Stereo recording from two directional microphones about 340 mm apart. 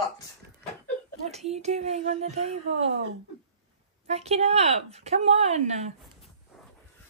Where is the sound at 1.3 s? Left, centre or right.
Centre.